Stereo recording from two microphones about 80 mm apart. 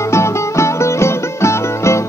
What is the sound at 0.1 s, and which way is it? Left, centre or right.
Music, left.